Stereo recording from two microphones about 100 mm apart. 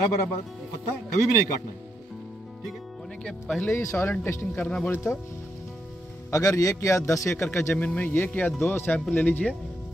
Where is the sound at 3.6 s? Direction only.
25° left (ahead or behind).